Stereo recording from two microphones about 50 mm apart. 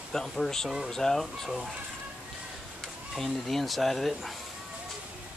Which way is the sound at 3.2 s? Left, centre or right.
Centre.